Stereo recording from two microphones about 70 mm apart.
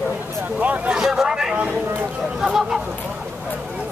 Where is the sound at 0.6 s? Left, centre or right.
Right.